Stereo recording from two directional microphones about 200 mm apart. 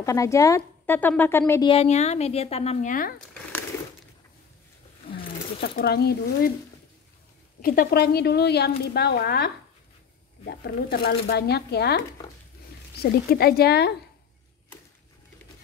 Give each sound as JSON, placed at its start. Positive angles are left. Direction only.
{"t": 0.0, "sound": "speech", "side_deg": 15}
{"t": 1.7, "sound": "speech", "side_deg": 30}
{"t": 5.1, "sound": "a woman's voice", "side_deg": 50}
{"t": 7.6, "sound": "a woman's voice", "side_deg": 45}